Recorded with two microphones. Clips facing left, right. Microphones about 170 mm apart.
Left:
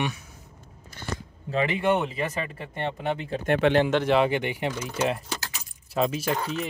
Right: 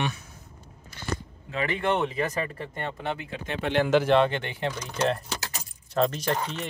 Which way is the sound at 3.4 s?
60° left (ahead or behind).